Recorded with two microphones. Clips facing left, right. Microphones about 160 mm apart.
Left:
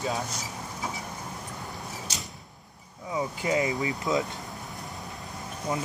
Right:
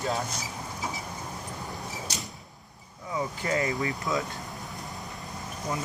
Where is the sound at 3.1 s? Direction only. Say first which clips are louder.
Left 2 dB; 15° left (ahead or behind).